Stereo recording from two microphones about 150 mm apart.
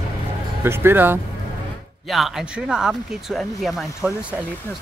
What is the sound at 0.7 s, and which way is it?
Speech, 15° right (ahead or behind).